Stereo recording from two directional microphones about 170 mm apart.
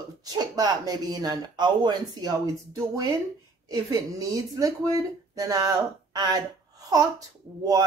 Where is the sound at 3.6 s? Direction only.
20° right (ahead or behind).